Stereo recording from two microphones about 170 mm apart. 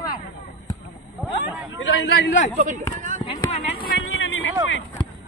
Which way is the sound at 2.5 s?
45° right (ahead or behind).